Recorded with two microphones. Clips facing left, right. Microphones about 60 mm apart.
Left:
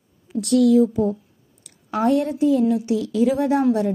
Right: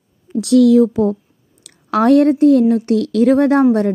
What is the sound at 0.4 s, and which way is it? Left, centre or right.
A woman's voice, right.